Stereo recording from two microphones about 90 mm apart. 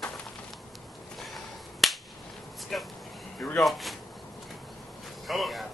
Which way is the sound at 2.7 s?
5° left (ahead or behind).